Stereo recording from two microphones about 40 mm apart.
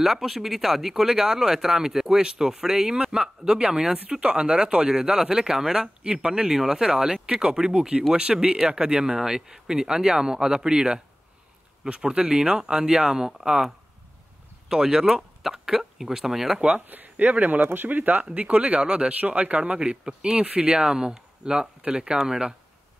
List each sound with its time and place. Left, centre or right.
0.0 s speech: centre; by 6.5 s right
6.5 s speech: centre
14.7 s speech: centre
16.5 s speech: right
16.9 s speech: right
18.2 s speech: right
19.0 s speech: right; by 20.4 s centre
20.4 s speech: right
20.7 s speech: centre